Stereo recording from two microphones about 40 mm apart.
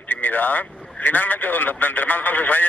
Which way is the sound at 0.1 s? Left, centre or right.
Left.